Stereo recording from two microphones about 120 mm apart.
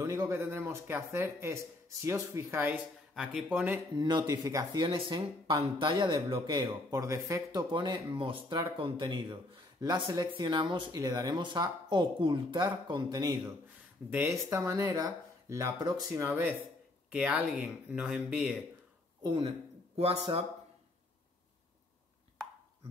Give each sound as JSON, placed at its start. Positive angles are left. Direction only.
{"t": 0.0, "sound": "speech", "side_deg": -25}
{"t": 3.2, "sound": "speech", "side_deg": -5}
{"t": 3.9, "sound": "speech", "side_deg": -35}
{"t": 4.8, "sound": "speech", "side_deg": -45}
{"t": 7.0, "sound": "speech", "side_deg": -25}
{"t": 7.7, "sound": "speech", "side_deg": -40}
{"t": 14.1, "sound": "speech", "side_deg": -20}
{"t": 17.1, "sound": "speech", "side_deg": -10}